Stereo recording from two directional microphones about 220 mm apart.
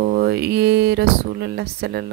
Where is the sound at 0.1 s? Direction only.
50° right (ahead or behind).